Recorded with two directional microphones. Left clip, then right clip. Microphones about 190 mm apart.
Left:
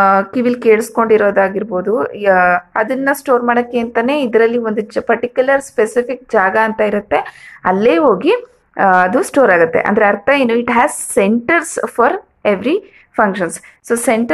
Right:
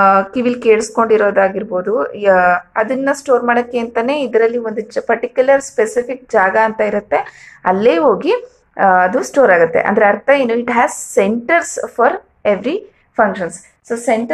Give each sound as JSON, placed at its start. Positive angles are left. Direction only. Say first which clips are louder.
{"t": 0.0, "sound": "speech", "louder": "even", "side_deg": 20}